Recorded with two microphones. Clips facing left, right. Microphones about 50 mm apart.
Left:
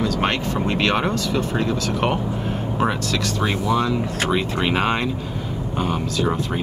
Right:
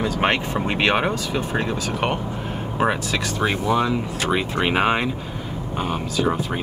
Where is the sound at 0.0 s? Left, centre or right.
Right.